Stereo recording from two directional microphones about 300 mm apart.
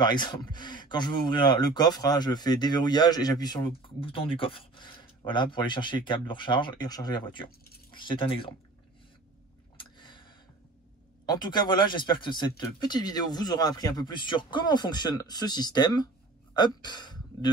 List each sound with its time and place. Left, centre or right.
0.0 s speech: centre
9.8 s a sound: centre
11.2 s speech: centre